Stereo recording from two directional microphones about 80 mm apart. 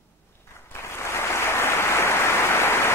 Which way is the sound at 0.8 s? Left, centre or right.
Left.